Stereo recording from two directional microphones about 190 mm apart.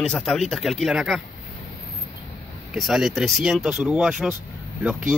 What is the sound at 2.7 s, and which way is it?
Speech, centre (ahead or behind).